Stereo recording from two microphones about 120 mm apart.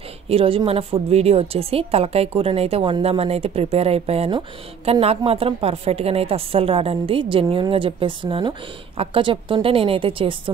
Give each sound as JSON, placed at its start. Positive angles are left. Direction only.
{"t": 0.3, "sound": "a woman's voice", "side_deg": -50}